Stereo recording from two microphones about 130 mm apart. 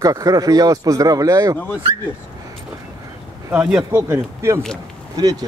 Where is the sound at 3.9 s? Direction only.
20° right (ahead or behind).